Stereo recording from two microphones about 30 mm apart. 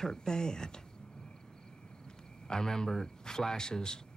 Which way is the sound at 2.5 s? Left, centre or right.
Centre.